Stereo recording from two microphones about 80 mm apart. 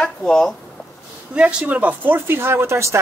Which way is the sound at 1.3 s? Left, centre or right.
Centre.